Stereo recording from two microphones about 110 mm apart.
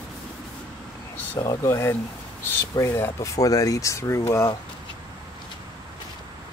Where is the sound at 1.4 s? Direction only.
30° left (ahead or behind).